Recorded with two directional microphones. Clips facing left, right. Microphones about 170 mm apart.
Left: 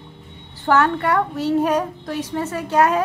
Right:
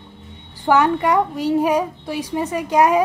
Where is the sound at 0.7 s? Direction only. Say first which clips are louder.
Right 2 dB; 15° right (ahead or behind).